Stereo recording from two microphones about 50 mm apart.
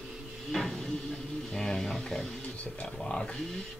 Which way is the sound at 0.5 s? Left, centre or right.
Centre.